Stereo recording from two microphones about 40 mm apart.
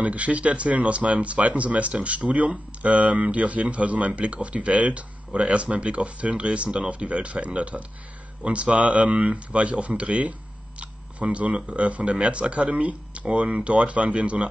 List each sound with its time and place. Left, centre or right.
0.0 s speech: right
10.8 s camera: right
11.7 s speech: right